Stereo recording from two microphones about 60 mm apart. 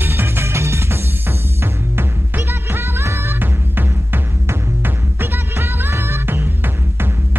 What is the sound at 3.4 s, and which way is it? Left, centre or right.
Music, right.